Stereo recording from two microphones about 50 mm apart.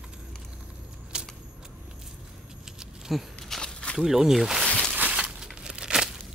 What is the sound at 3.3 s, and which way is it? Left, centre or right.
Walk, centre.